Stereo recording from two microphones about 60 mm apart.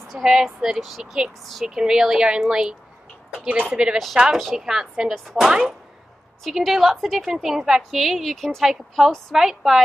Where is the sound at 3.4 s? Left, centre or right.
Right.